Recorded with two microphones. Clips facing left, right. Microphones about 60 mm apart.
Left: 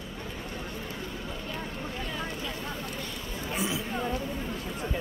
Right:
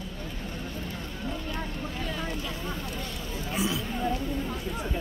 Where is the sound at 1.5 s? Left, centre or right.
Centre.